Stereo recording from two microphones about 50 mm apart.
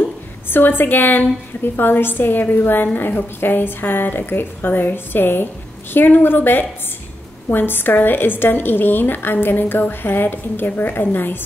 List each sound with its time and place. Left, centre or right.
0.0 s a woman's voice: left